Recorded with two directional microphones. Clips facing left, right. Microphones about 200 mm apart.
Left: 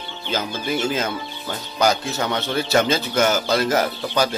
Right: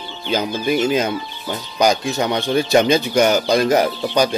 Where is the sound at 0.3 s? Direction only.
15° right (ahead or behind).